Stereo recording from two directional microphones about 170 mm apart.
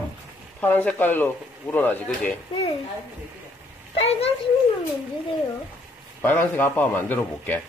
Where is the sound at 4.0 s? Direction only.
35° left (ahead or behind).